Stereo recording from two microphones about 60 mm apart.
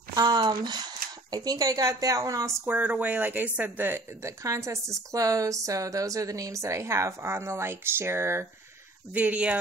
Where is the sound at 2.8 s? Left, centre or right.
Right.